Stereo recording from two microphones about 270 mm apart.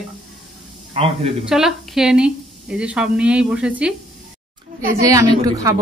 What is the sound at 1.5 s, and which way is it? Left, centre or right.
A woman's voice, centre.